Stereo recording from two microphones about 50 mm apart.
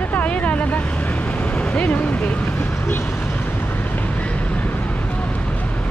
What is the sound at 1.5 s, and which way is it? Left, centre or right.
Speech, left.